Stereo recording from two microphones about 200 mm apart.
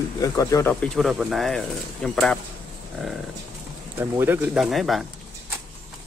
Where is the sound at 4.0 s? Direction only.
10° right (ahead or behind).